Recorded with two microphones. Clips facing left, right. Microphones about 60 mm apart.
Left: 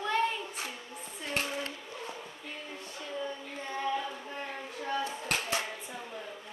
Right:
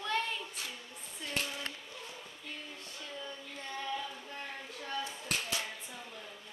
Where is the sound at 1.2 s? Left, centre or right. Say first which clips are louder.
Left 4 dB; left.